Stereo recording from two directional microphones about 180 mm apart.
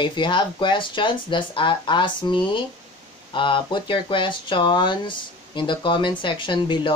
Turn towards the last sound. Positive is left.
turn(degrees=25)  # may be behind; listen again after turning